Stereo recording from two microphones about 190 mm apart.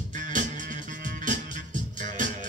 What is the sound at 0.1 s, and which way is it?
Music, 45° right (ahead or behind).